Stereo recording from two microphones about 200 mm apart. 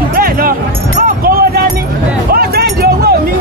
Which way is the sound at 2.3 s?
50° right (ahead or behind).